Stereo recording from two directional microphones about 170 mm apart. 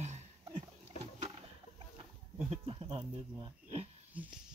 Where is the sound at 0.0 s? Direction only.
40° right (ahead or behind).